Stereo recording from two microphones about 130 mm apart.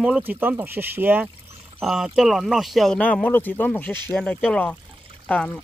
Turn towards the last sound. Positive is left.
turn(degrees=10)  # may be behind; listen again after turning